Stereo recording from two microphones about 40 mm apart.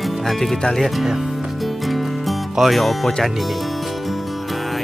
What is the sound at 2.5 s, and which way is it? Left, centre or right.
Speech, centre.